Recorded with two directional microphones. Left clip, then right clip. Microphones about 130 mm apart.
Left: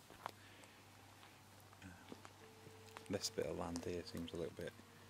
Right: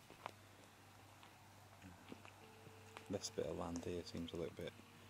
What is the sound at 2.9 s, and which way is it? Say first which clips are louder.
Speech: left 2 dB; 10° left (ahead or behind).